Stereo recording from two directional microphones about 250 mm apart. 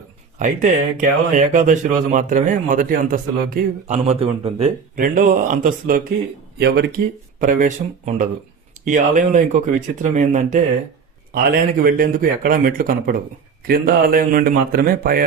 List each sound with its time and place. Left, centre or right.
0.4 s a man's voice: right
4.9 s a man's voice: right